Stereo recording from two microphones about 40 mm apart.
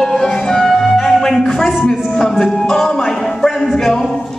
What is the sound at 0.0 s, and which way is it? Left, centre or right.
Music, centre.